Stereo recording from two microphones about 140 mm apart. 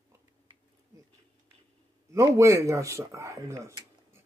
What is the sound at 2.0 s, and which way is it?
Speech, 20° right (ahead or behind).